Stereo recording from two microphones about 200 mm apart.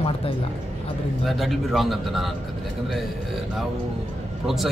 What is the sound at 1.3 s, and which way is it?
Speech, centre (ahead or behind).